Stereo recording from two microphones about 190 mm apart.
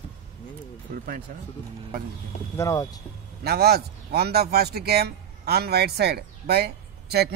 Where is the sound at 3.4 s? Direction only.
55° right (ahead or behind).